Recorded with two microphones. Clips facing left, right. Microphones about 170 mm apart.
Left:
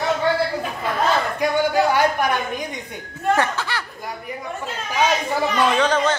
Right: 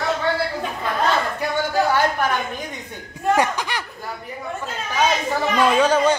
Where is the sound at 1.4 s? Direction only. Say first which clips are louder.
Left 3 dB; 15° left (ahead or behind).